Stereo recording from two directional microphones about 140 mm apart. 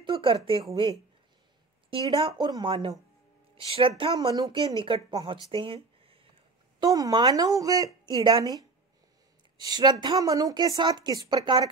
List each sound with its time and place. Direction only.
0.0 s speech: 40° right (ahead or behind)
1.9 s a woman's voice: 40° right (ahead or behind)
2.4 s a woman's voice: 30° right (ahead or behind)
6.9 s a woman's voice: 25° right (ahead or behind)